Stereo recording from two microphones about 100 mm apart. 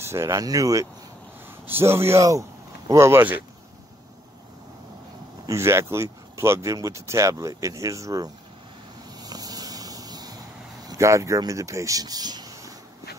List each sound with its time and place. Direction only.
0.0 s speech: 30° right (ahead or behind)
1.7 s a man's voice: 25° right (ahead or behind)
5.5 s speech: 30° right (ahead or behind)
9.2 s vehicle: 40° right (ahead or behind)
10.9 s speech: 30° right (ahead or behind)